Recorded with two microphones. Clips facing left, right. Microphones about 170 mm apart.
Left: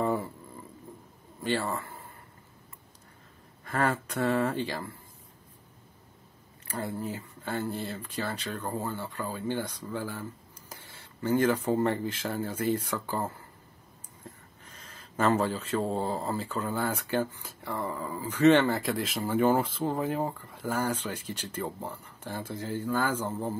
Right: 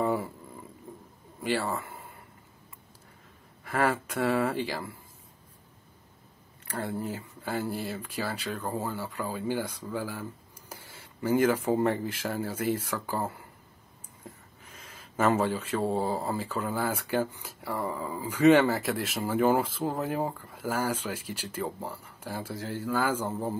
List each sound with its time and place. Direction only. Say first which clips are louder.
0.0 s a sound: right 1 dB; 5° right (ahead or behind)
1.4 s speech: right 1 dB; 5° right (ahead or behind)
3.6 s speech: right 1 dB; 5° right (ahead or behind)
7.0 s speech: right 1 dB; 10° right (ahead or behind)
14.6 s speech: right 1 dB; 10° right (ahead or behind)
22.6 s speech: left 1 dB; 90° right
22.8 s speech: right 1 dB; 10° right (ahead or behind)